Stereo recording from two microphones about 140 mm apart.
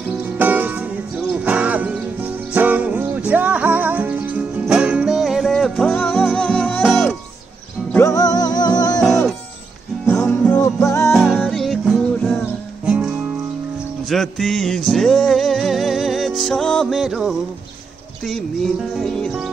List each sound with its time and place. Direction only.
0.4 s music: 10° right (ahead or behind)
7.9 s music: 25° left (ahead or behind)
10.0 s music: 5° left (ahead or behind)
10.6 s music: 20° left (ahead or behind)
11.4 s music: centre (ahead or behind)
12.8 s music: 5° right (ahead or behind)